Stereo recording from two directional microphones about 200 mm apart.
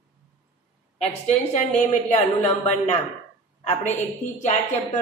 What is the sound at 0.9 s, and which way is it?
A woman's voice, 35° left (ahead or behind).